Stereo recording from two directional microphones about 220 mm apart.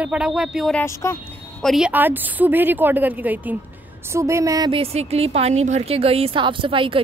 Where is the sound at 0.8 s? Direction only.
10° left (ahead or behind).